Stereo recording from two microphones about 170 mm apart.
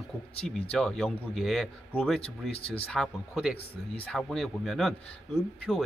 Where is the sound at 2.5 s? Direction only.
35° left (ahead or behind).